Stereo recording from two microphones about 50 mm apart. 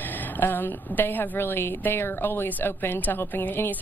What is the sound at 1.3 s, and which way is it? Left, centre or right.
Speech, left.